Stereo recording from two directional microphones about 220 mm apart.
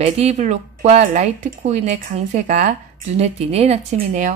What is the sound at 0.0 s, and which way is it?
A woman's voice, 30° right (ahead or behind).